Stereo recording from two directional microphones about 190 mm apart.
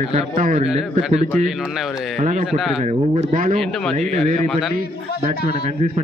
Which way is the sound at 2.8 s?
35° right (ahead or behind).